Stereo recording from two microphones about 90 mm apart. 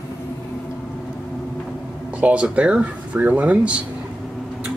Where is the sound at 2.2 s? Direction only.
15° right (ahead or behind).